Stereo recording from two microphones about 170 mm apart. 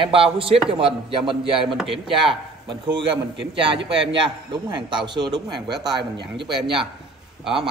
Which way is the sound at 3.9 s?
30° right (ahead or behind).